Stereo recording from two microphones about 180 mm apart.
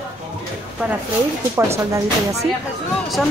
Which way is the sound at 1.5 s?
15° right (ahead or behind).